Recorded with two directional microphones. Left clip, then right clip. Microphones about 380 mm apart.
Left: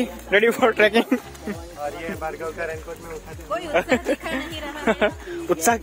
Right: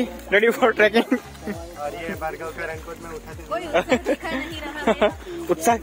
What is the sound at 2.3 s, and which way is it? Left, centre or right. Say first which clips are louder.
Speech: left 1 dB; centre.